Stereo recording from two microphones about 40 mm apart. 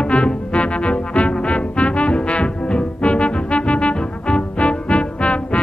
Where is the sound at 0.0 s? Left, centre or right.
Left.